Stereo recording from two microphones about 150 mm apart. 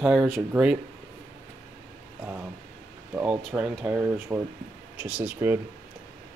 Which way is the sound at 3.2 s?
10° right (ahead or behind).